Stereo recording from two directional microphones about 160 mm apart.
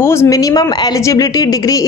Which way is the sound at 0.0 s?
15° left (ahead or behind).